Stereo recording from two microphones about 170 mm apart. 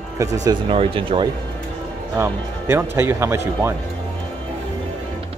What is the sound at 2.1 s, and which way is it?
Speech, 15° right (ahead or behind).